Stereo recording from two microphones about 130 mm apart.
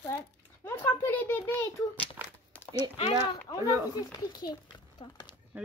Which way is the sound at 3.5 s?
30° left (ahead or behind).